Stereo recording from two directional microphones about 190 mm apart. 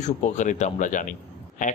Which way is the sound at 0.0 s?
40° left (ahead or behind).